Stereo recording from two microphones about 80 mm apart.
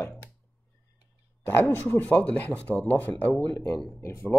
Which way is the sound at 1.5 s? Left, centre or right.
Left.